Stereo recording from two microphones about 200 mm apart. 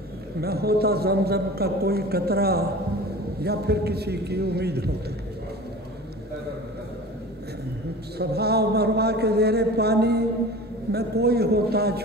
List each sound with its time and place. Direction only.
0.4 s a man's voice: 50° right (ahead or behind)
8.2 s a man's voice: 55° right (ahead or behind)